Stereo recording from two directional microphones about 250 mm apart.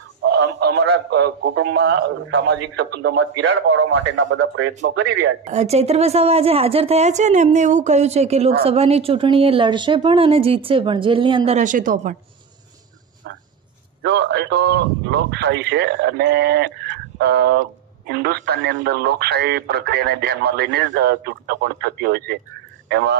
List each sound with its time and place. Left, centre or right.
0.2 s a man's voice: right
5.4 s speech: right
14.0 s a man's voice: right